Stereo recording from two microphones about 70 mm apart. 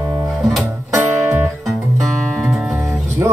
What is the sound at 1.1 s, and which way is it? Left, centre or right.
Music, right.